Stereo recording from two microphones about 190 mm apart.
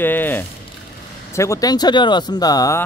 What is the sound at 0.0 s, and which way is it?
Speech, 10° left (ahead or behind).